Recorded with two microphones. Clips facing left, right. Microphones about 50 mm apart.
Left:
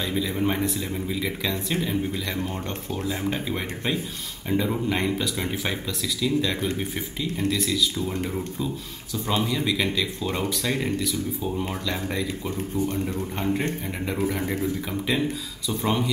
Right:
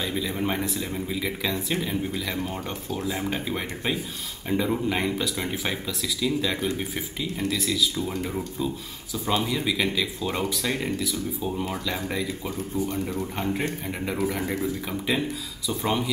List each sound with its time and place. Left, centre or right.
0.0 s speech: centre
9.3 s speech: centre
12.5 s speech: left
12.9 s speech: centre